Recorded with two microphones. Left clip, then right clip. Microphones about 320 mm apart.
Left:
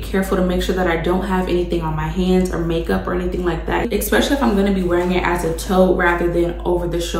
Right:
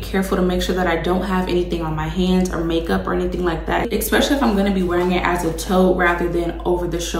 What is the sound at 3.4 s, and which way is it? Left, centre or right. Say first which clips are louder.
Speech: even; centre.